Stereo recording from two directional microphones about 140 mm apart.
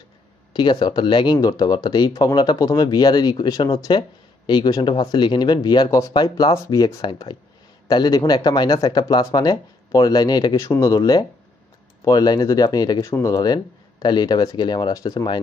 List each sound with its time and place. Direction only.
0.5 s speech: 30° left (ahead or behind)
7.0 s speech: 35° left (ahead or behind)